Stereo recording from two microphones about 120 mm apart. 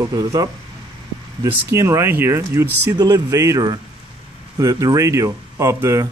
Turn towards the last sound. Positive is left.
turn(degrees=-25)  # may be behind; listen again after turning